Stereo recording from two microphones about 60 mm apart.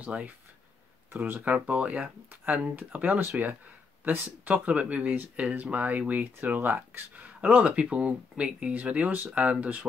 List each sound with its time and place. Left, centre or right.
0.0 s speech: right
1.1 s speech: right
1.4 s speech: right